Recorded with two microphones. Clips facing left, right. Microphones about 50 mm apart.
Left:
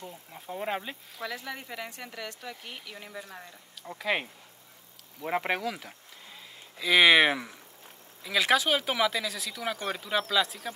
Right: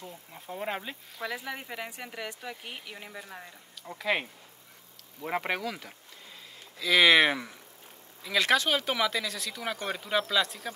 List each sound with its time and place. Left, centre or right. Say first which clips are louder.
0.0 s speech: left 1 dB; centre
1.3 s speech: right 1 dB; centre
6.8 s speech: left 1 dB; centre
7.2 s speech: left 1 dB; centre